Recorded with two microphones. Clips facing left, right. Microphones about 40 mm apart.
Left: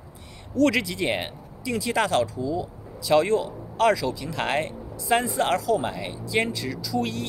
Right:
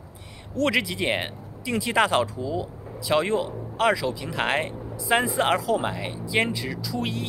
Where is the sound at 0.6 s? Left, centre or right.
Centre.